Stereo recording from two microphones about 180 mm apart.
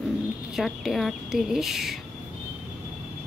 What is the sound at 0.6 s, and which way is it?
Speech, centre (ahead or behind).